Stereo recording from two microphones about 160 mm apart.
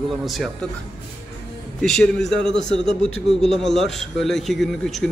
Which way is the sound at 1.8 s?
5° left (ahead or behind).